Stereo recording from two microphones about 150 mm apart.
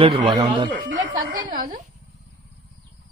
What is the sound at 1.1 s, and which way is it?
Speech, 60° right (ahead or behind).